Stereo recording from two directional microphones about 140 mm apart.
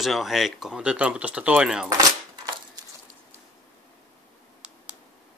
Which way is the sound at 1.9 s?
30° right (ahead or behind).